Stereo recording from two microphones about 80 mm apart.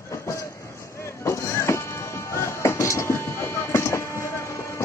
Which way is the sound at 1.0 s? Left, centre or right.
Left.